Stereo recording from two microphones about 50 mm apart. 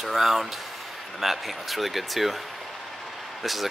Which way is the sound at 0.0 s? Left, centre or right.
Centre.